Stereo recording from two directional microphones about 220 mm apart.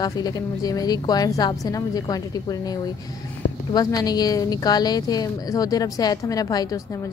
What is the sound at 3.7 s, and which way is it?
A woman's voice, 15° left (ahead or behind).